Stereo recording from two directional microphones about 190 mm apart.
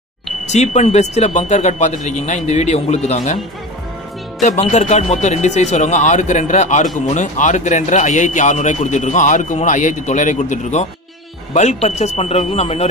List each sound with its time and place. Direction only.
0.5 s speech: 35° left (ahead or behind)
4.4 s speech: 35° left (ahead or behind)